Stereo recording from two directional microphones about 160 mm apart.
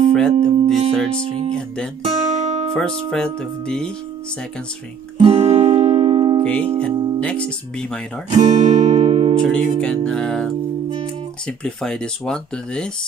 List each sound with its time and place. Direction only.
0.1 s music: 5° left (ahead or behind)
2.0 s guitar: 40° right (ahead or behind)
2.7 s speech: 5° left (ahead or behind)
5.2 s music: 35° right (ahead or behind)
6.8 s speech: 5° left (ahead or behind)
8.3 s guitar: 40° right (ahead or behind)
9.4 s speech: 5° left (ahead or behind)